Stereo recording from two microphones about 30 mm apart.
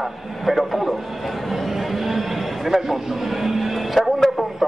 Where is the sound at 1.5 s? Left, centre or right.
Centre.